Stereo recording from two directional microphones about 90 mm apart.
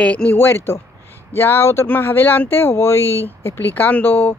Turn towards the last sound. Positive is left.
turn(degrees=25)  # may be behind; listen again after turning